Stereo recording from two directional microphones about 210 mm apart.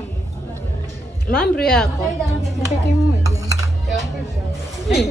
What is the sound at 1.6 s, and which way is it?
Speech, centre (ahead or behind).